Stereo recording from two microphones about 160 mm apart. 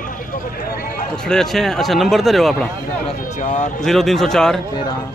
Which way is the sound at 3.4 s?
50° left (ahead or behind).